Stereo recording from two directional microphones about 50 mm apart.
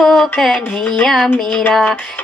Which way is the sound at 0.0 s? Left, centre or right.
Centre.